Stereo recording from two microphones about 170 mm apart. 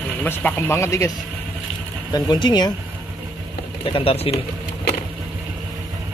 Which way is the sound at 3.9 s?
35° left (ahead or behind).